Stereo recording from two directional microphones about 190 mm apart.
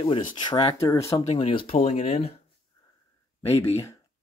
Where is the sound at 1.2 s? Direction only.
35° left (ahead or behind).